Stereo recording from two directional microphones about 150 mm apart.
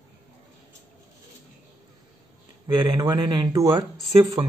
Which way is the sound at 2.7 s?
30° right (ahead or behind).